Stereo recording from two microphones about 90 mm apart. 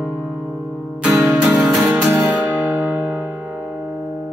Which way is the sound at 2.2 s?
25° right (ahead or behind).